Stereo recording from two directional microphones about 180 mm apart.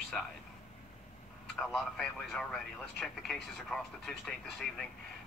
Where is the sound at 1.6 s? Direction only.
Centre (ahead or behind).